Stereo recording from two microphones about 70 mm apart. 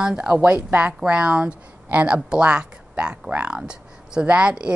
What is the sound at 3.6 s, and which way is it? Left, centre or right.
Speech, centre.